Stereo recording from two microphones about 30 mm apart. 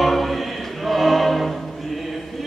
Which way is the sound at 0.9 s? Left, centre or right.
Centre.